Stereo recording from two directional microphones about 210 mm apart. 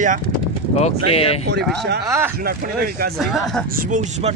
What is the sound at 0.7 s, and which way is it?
Speech, 30° left (ahead or behind).